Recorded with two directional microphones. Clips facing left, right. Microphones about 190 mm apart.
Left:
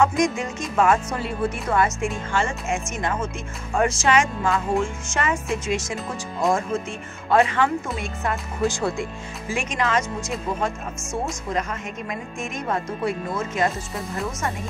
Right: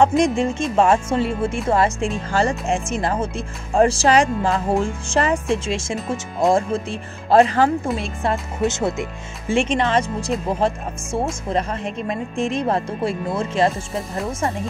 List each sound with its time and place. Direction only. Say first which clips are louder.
0.0 s speech: right 4 dB; 30° right (ahead or behind)